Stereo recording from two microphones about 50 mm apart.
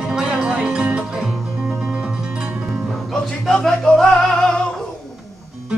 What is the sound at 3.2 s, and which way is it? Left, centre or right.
Music, centre.